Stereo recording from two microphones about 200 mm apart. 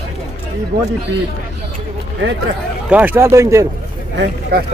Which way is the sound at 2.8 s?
10° right (ahead or behind).